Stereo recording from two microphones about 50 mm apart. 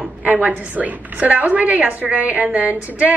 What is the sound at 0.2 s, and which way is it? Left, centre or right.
A woman's voice, right.